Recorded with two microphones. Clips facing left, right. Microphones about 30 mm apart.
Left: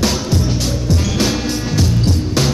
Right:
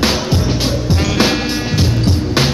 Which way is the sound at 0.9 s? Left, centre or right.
Right.